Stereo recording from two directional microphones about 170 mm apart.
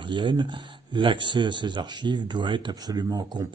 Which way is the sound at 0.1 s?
25° right (ahead or behind).